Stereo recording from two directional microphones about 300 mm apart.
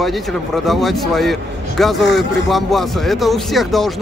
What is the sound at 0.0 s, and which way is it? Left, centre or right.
A man's voice, centre.